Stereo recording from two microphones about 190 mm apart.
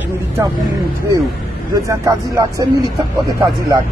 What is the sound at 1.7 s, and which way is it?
A man's voice, 15° right (ahead or behind).